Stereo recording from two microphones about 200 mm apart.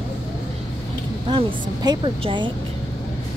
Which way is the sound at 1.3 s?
20° right (ahead or behind).